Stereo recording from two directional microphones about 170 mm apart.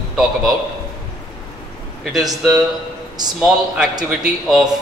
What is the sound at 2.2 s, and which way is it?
Speech, 20° right (ahead or behind).